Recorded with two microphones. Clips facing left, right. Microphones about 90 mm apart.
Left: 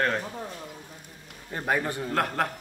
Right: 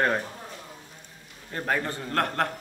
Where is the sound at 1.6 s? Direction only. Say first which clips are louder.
Left 1 dB; 10° left (ahead or behind).